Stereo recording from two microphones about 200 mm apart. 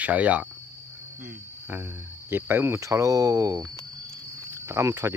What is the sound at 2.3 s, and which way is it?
Speech, 10° right (ahead or behind).